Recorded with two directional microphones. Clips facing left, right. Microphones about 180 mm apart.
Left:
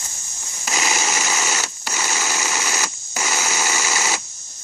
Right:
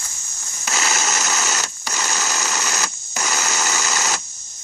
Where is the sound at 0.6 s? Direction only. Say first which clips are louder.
Even; 10° left (ahead or behind).